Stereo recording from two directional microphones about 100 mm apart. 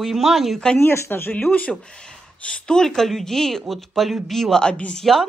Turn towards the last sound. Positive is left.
turn(degrees=0)  # may be behind; listen again after turning